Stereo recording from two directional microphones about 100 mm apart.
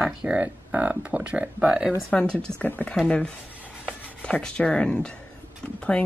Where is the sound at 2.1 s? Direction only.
10° left (ahead or behind).